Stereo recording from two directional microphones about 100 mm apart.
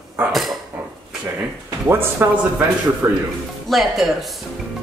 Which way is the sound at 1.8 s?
25° right (ahead or behind).